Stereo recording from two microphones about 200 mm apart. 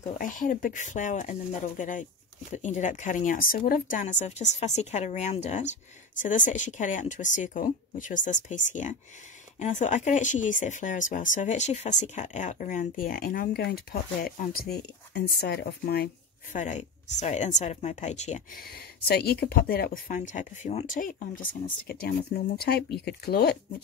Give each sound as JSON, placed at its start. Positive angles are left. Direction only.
{"t": 0.2, "sound": "speech", "side_deg": 40}
{"t": 16.5, "sound": "speech", "side_deg": 40}